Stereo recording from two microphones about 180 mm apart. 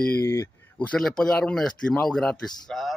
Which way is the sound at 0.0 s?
10° left (ahead or behind).